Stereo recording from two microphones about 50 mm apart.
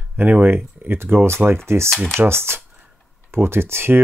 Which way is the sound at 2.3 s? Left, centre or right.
Right.